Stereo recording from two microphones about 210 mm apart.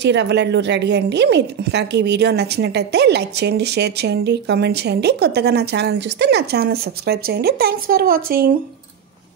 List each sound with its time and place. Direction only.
0.0 s speech: 55° right (ahead or behind)